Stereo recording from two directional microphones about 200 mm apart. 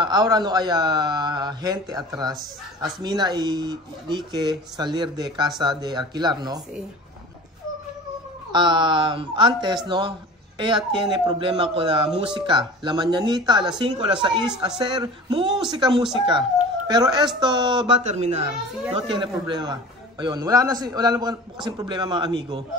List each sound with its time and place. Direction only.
0.0 s speech: 20° right (ahead or behind)
8.5 s speech: 25° right (ahead or behind)
18.0 s speech: 35° right (ahead or behind)